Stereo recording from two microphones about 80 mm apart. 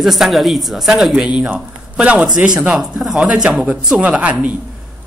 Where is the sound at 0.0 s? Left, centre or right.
Centre.